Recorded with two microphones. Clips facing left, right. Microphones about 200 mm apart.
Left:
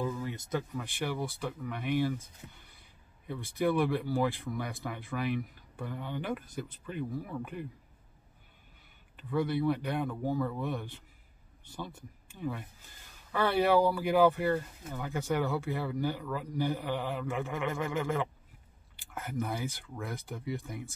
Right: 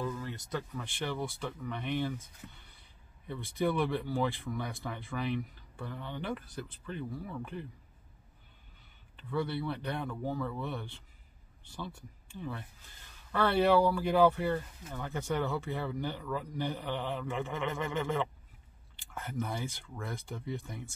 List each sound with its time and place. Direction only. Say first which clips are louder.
0.1 s speech: left 3 dB; 15° left (ahead or behind)
3.5 s speech: left 2 dB; 5° left (ahead or behind)
9.1 s speech: left 3 dB; 10° left (ahead or behind)
12.4 s speech: left 4 dB; 10° left (ahead or behind)
19.3 s speech: left 2 dB; centre (ahead or behind)
20.0 s speech: left 1 dB; 15° left (ahead or behind)
20.6 s speech: left 3 dB; centre (ahead or behind)